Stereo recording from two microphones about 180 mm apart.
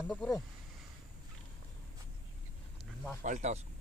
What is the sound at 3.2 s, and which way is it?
Speech, 40° right (ahead or behind).